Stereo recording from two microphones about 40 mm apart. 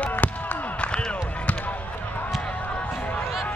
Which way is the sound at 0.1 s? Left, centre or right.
Left.